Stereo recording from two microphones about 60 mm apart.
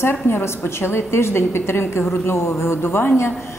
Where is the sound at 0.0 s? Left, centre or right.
Left.